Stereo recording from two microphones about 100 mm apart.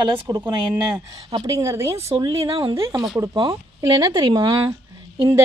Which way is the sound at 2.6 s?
55° right (ahead or behind).